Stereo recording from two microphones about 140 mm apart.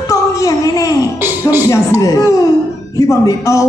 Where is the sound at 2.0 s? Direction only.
25° left (ahead or behind).